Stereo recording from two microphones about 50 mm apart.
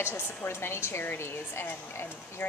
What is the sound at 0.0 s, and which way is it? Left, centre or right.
A woman's voice, left.